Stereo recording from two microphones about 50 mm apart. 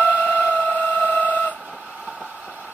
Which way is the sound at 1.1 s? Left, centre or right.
Left.